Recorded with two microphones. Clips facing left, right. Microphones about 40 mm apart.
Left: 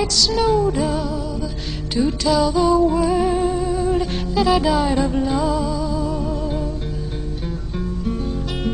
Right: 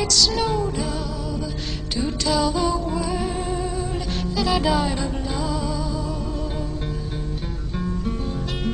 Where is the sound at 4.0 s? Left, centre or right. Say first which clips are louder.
Left 5 dB; centre.